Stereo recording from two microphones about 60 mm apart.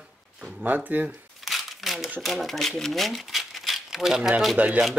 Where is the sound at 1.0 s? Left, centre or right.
Centre.